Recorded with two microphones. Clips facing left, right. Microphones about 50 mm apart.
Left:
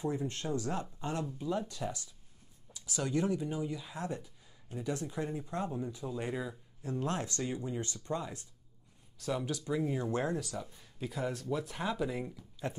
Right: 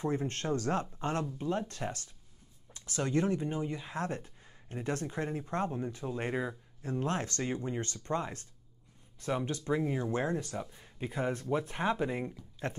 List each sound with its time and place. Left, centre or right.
0.0 s speech: right
3.0 s speech: right
3.9 s speech: right
9.2 s speech: right
12.6 s speech: right